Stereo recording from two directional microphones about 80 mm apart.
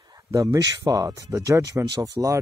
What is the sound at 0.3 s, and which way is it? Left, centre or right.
Speech, right.